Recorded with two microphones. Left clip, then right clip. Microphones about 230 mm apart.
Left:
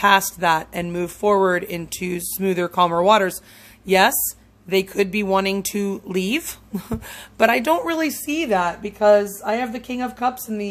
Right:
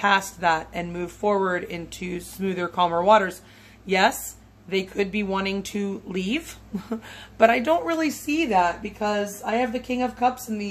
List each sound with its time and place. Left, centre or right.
0.0 s speech: left